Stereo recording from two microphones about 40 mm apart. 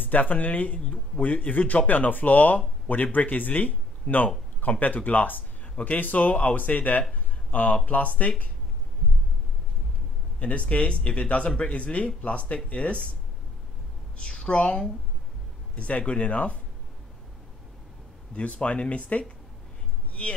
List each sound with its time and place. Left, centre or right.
0.0 s speech: left
10.4 s speech: left
14.1 s a woman's voice: left
18.3 s speech: left